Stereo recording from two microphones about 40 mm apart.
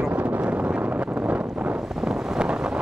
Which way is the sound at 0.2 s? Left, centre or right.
Right.